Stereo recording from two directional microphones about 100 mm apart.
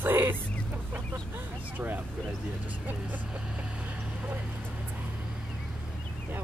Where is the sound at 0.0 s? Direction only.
20° right (ahead or behind).